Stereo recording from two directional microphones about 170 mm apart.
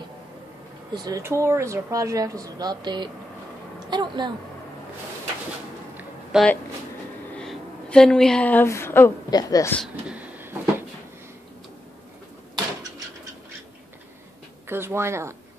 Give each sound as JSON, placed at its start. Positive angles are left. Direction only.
{"t": 0.9, "sound": "speech", "side_deg": -20}
{"t": 6.3, "sound": "speech", "side_deg": 0}
{"t": 10.0, "sound": "a sound", "side_deg": -10}
{"t": 14.7, "sound": "speech", "side_deg": -15}